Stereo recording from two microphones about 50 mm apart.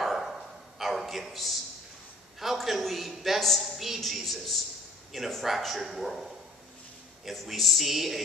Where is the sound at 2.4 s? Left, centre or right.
Centre.